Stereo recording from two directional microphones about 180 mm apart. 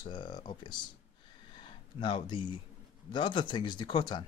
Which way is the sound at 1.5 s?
25° left (ahead or behind).